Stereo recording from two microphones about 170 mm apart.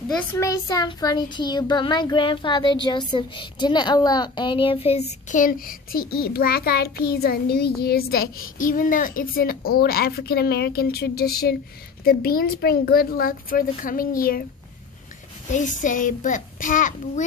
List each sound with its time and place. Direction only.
0.1 s a child's voice: 15° left (ahead or behind); by 14.4 s 55° left (ahead or behind)
15.4 s a child's voice: 45° left (ahead or behind)